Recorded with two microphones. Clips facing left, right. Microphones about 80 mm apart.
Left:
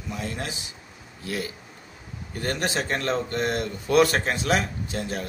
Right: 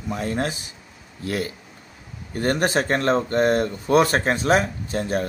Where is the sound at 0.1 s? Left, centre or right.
Right.